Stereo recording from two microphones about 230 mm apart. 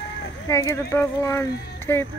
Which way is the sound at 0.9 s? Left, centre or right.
Centre.